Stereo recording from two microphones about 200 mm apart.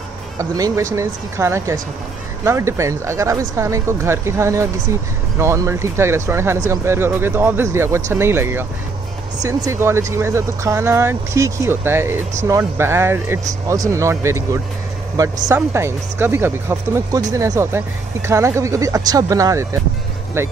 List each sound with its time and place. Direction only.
0.4 s speech: 15° right (ahead or behind)